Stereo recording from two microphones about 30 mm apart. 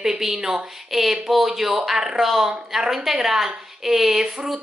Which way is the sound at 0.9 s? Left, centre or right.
Centre.